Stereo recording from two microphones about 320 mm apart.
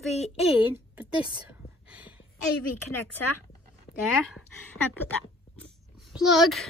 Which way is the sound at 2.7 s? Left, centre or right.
Left.